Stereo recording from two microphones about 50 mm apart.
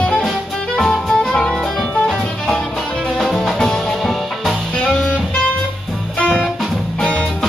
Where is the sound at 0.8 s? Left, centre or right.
Centre.